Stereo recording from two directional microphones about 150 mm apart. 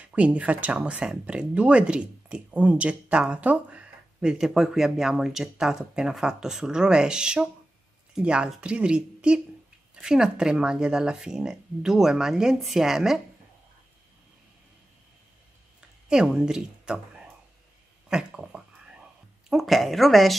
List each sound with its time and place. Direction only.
0.0 s speech: 10° right (ahead or behind)
16.1 s speech: 5° right (ahead or behind)
18.1 s a sound: 5° right (ahead or behind)
19.5 s speech: centre (ahead or behind)